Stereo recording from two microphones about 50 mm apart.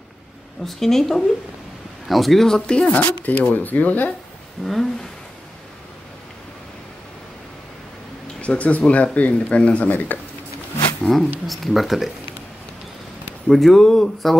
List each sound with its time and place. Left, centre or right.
0.7 s speech: centre; by 4.1 s left
4.6 s speech: centre
8.4 s speech: left
9.8 s speech: left
11.4 s speech: centre
13.5 s speech: centre